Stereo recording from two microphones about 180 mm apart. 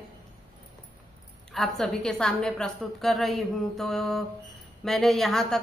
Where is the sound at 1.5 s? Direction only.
Centre (ahead or behind).